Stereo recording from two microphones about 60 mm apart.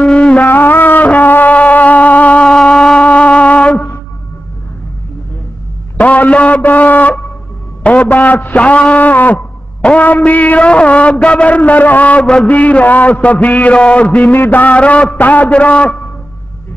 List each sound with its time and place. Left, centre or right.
0.0 s music: centre
0.5 s music: left
5.9 s a sound: left
7.8 s a man's voice: left